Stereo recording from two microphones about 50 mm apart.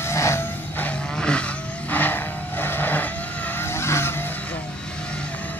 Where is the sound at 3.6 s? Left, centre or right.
Left.